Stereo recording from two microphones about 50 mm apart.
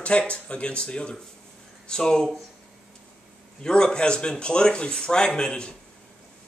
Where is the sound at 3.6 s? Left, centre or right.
Centre.